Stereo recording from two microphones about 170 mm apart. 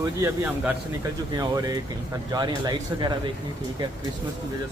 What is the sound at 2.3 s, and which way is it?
Speech, 25° right (ahead or behind).